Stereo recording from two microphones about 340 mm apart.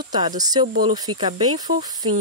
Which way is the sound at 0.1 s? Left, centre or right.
Centre.